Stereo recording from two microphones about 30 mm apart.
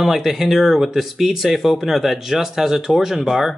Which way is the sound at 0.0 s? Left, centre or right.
Centre.